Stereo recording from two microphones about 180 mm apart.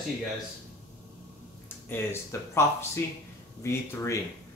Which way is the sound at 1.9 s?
15° left (ahead or behind).